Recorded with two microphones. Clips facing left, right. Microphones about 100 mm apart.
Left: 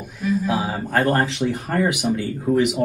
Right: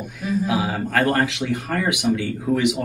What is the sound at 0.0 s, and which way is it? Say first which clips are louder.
Speech: left 1 dB; centre (ahead or behind).